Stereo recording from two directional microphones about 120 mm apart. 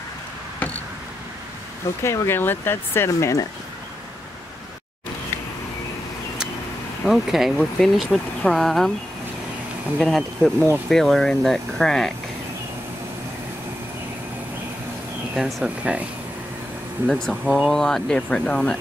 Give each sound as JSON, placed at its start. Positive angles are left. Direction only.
{"t": 2.0, "sound": "speech", "side_deg": 20}
{"t": 7.1, "sound": "speech", "side_deg": 0}
{"t": 9.9, "sound": "speech", "side_deg": 5}
{"t": 15.3, "sound": "speech", "side_deg": -5}
{"t": 17.0, "sound": "speech", "side_deg": 5}